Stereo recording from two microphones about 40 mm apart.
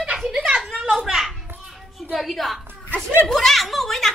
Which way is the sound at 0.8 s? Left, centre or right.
Right.